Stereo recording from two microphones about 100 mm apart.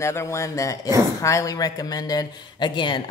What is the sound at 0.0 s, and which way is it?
A man's voice, 30° left (ahead or behind).